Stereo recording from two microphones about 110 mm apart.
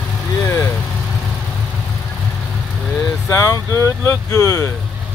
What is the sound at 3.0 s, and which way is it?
Speech, 25° left (ahead or behind).